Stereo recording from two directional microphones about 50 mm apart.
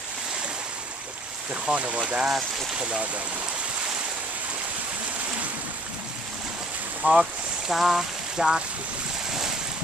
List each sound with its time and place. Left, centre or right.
1.5 s speech: right
7.0 s speech: centre